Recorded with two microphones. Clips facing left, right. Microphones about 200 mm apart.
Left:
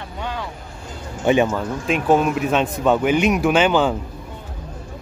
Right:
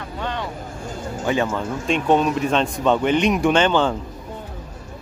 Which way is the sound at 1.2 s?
20° left (ahead or behind).